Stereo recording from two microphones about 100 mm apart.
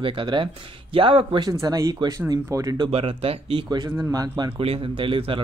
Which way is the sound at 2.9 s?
75° right (ahead or behind).